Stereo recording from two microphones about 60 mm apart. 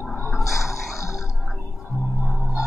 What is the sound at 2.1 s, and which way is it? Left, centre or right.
Music, centre.